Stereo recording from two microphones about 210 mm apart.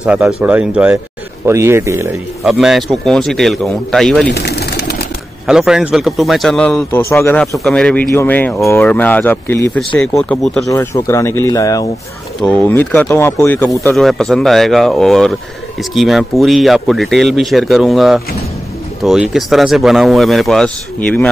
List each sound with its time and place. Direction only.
0.0 s speech: 5° right (ahead or behind)
2.4 s speech: centre (ahead or behind)
4.3 s bird: 50° left (ahead or behind)
5.5 s speech: 5° right (ahead or behind)
10.7 s speech: 15° left (ahead or behind)
12.4 s speech: 5° left (ahead or behind)